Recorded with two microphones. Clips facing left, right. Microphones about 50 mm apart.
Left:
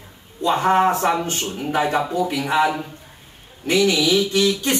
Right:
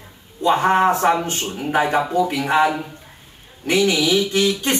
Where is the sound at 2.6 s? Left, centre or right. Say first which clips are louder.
Left 1 dB; centre.